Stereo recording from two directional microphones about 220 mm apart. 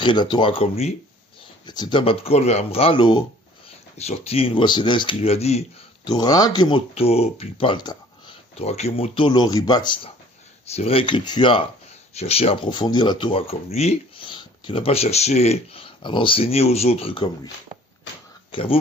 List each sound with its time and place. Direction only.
0.0 s speech: 20° left (ahead or behind)
18.5 s speech: 25° left (ahead or behind)